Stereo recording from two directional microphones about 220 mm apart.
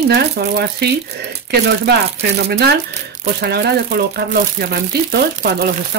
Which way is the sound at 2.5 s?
50° right (ahead or behind).